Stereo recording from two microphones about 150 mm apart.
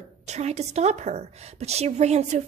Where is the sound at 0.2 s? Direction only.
50° right (ahead or behind).